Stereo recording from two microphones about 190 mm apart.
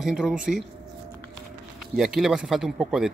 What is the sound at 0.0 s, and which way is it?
Speech, 5° right (ahead or behind).